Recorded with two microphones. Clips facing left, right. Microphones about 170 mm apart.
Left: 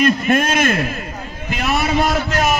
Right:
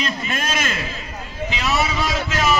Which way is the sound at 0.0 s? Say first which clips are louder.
Left 10 dB; 55° left (ahead or behind).